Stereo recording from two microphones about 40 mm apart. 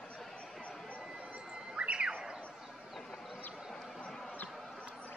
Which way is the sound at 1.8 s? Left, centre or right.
Right.